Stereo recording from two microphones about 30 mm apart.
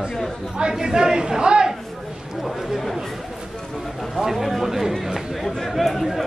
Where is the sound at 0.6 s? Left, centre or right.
Right.